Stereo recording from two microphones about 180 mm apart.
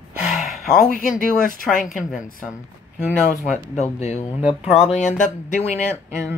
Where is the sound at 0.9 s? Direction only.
45° left (ahead or behind).